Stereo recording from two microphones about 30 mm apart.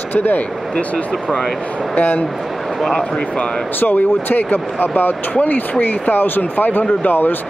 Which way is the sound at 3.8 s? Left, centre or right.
Left.